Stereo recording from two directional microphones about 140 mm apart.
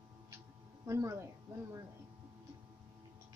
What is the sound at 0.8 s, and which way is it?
Speech, 20° right (ahead or behind).